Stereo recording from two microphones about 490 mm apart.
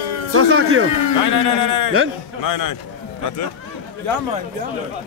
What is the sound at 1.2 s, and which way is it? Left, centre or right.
A man's voice, left.